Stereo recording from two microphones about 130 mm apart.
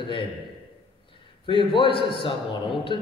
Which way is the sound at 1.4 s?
40° left (ahead or behind).